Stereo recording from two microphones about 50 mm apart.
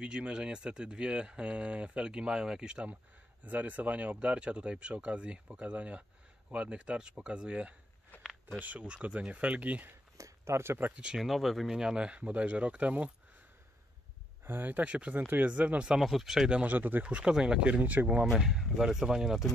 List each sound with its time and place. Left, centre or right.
0.0 s speech: centre
3.4 s speech: right
8.5 s speech: right
10.2 s speech: right
10.9 s speech: right
11.1 s speech: centre; by 13.1 s right
14.4 s speech: right
14.9 s speech: right
16.0 s speech: centre
16.4 s speech: right
16.7 s speech: right
17.0 s speech: centre
18.3 s speech: centre